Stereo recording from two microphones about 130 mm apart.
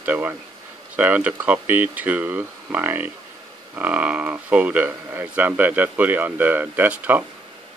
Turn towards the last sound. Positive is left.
turn(degrees=-15)  # may be behind; listen again after turning